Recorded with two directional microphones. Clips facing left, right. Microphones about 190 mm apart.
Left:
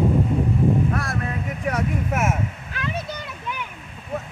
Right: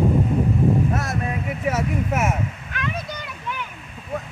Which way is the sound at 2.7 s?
30° left (ahead or behind).